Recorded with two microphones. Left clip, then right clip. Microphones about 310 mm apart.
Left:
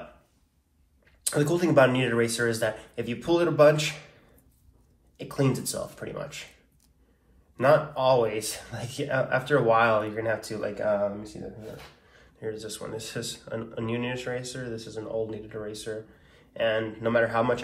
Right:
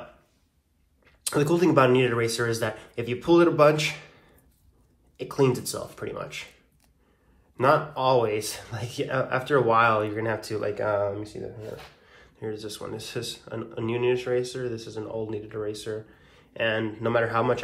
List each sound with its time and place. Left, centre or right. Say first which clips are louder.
1.2 s speech: right 3 dB; right
5.1 s speech: right 4 dB; centre
7.5 s speech: even; centre